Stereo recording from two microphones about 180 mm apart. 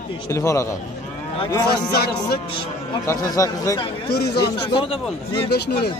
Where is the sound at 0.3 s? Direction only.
15° left (ahead or behind).